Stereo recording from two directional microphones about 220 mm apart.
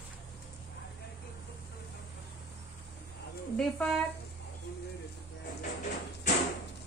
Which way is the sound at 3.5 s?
5° left (ahead or behind).